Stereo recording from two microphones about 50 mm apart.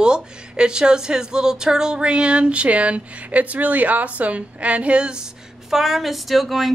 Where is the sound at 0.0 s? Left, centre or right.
Centre.